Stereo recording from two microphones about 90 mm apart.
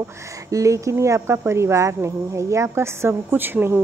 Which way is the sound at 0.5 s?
35° right (ahead or behind).